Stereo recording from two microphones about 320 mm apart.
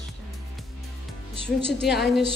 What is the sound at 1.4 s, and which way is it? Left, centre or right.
Speech, left.